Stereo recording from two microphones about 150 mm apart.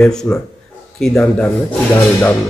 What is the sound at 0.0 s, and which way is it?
Speech, 5° left (ahead or behind).